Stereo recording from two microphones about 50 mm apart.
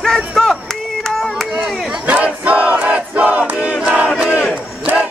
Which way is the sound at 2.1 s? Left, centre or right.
Right.